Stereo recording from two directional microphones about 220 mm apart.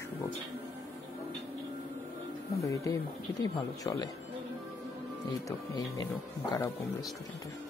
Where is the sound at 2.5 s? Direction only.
15° left (ahead or behind).